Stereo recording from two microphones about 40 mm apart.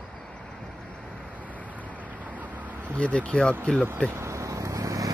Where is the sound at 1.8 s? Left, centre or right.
Right.